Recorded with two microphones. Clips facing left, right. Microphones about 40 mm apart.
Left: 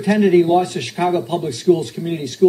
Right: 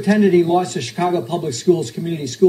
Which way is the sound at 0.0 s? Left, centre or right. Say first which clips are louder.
Even; centre.